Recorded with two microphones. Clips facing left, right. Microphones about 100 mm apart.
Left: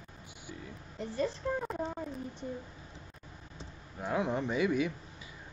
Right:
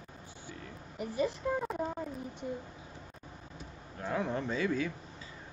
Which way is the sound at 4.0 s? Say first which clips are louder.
Left 2 dB; 15° left (ahead or behind).